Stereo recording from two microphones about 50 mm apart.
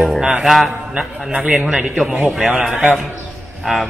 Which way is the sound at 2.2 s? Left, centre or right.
Centre.